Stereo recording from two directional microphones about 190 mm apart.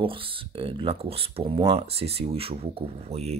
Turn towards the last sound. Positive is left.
turn(degrees=-35)  # may be behind; listen again after turning